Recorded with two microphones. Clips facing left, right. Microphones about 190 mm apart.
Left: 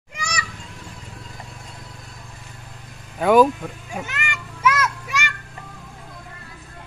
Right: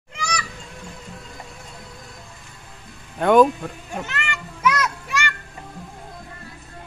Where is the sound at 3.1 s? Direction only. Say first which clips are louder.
Even; 5° left (ahead or behind).